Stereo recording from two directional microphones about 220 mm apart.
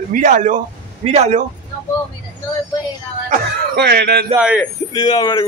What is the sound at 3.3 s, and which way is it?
Speech, 50° right (ahead or behind).